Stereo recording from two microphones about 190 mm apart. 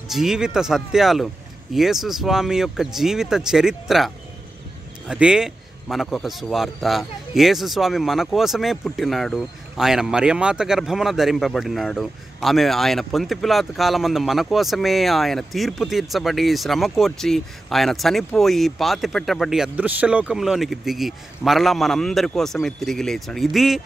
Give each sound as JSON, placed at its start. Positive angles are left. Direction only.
{"t": 0.1, "sound": "a man's voice", "side_deg": 0}